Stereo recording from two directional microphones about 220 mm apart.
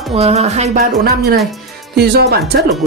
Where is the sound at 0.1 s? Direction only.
30° right (ahead or behind).